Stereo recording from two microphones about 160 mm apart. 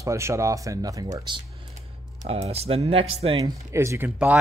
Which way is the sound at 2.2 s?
40° right (ahead or behind).